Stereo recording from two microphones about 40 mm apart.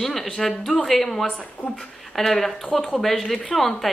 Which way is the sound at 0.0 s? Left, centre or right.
Centre.